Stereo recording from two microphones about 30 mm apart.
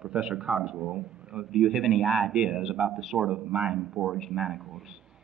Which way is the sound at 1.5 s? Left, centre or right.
Centre.